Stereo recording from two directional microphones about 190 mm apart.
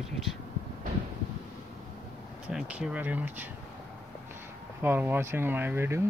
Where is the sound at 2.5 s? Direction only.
5° right (ahead or behind).